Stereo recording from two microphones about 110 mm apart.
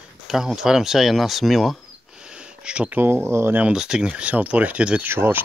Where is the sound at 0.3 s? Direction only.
5° right (ahead or behind).